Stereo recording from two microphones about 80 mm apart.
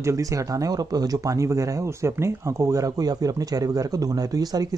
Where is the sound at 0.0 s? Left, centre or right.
Right.